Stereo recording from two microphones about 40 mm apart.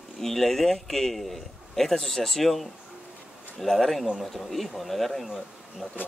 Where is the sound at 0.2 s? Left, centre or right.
Centre.